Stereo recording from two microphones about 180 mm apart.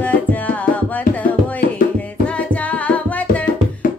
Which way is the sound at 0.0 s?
10° left (ahead or behind).